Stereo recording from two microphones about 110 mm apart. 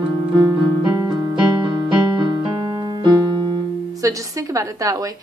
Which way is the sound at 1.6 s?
45° right (ahead or behind).